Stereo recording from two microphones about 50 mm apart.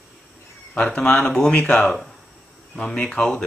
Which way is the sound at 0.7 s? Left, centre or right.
Centre.